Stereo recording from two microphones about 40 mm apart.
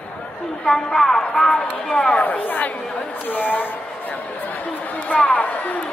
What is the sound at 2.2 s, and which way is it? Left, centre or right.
Speech, left.